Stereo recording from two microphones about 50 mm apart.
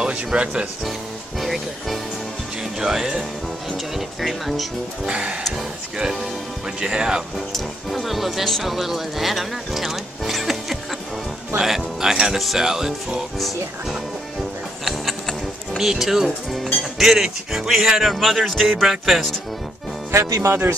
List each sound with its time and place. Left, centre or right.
0.0 s speech: centre
1.4 s speech: centre
2.8 s speech: centre
5.0 s speech: centre
6.8 s speech: centre
7.3 s speech: centre
14.9 s a sound: centre
15.8 s speech: centre
20.1 s speech: right